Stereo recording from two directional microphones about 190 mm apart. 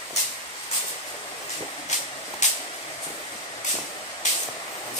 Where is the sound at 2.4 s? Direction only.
40° left (ahead or behind).